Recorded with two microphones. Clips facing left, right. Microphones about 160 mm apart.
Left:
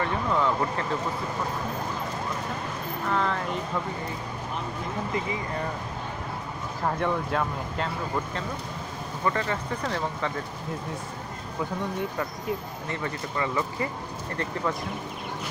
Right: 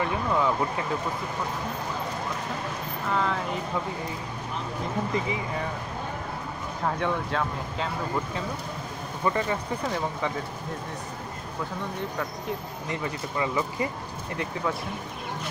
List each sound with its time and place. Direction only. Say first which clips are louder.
0.0 s speech: even; 10° right (ahead or behind)
3.1 s speech: even; centre (ahead or behind)
6.8 s speech: left 1 dB; 5° left (ahead or behind)
9.2 s speech: right 1 dB; 15° right (ahead or behind)
13.0 s speech: even; 15° right (ahead or behind)